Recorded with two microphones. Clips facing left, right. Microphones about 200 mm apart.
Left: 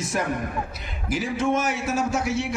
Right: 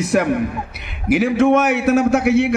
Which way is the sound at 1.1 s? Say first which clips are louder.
Right 10 dB; 65° right (ahead or behind).